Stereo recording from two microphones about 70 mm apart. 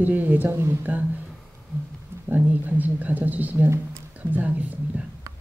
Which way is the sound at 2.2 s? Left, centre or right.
Right.